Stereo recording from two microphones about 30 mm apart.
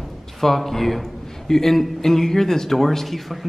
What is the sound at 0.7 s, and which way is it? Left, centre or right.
A man's voice, centre.